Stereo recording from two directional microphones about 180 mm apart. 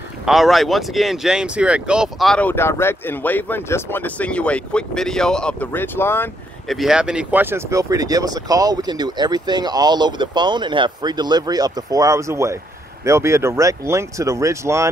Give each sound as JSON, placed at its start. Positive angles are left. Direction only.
{"t": 0.2, "sound": "speech", "side_deg": 0}
{"t": 6.7, "sound": "speech", "side_deg": 0}